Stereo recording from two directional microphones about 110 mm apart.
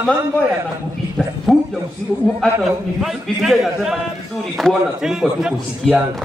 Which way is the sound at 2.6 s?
5° right (ahead or behind).